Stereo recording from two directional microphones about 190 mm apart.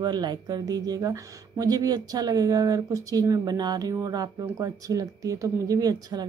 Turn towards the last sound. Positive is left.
turn(degrees=-20)  # may be behind; listen again after turning